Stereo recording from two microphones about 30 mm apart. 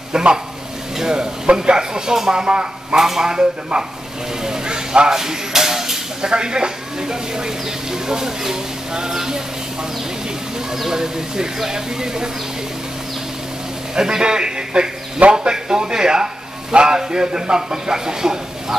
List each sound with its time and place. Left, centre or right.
0.1 s a sound: right
0.9 s stir: right
1.5 s speech: right
3.0 s speech: centre
4.5 s a sound: right
6.3 s speech: right
10.9 s speech: centre
13.9 s speech: right